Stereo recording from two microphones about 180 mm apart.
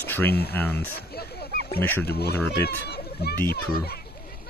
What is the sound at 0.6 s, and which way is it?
Speech, 10° left (ahead or behind).